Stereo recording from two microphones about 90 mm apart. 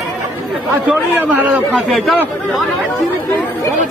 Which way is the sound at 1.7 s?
Centre (ahead or behind).